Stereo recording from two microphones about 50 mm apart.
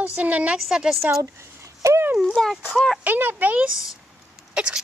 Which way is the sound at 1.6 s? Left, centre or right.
Right.